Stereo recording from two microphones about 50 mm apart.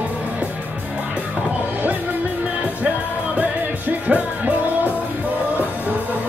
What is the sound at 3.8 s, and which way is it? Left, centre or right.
Music, right.